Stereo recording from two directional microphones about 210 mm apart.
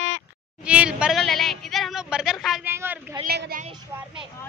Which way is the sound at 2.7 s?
10° right (ahead or behind).